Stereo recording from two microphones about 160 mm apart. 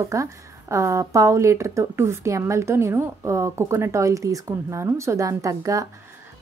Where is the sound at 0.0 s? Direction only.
20° right (ahead or behind).